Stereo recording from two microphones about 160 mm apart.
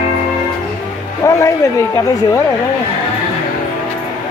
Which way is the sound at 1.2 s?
20° left (ahead or behind).